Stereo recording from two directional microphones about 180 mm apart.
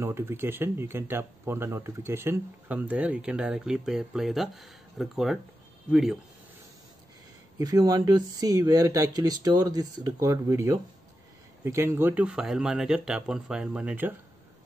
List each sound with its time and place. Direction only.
0.0 s speech: 15° right (ahead or behind)
7.5 s speech: 20° right (ahead or behind)